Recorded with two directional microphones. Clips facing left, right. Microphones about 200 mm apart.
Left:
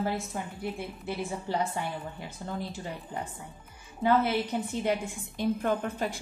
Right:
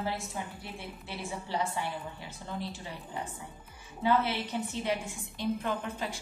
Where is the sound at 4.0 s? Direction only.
45° left (ahead or behind).